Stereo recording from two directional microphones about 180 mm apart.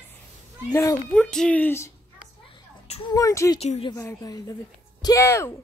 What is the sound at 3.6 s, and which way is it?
Speech, 35° left (ahead or behind).